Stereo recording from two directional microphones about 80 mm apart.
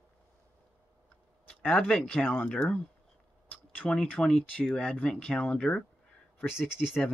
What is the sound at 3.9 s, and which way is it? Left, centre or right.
Speech, centre.